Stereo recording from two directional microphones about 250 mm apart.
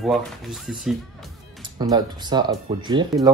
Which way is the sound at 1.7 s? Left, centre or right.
Centre.